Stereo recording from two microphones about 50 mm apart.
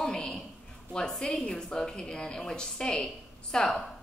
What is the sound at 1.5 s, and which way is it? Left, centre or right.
A woman's voice, centre.